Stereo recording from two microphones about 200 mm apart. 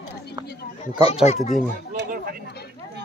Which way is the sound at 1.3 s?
35° left (ahead or behind).